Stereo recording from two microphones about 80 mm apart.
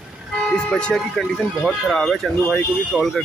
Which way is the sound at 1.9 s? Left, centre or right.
Centre.